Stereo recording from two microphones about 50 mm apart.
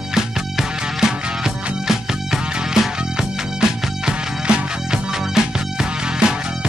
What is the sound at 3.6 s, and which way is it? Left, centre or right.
Music, centre.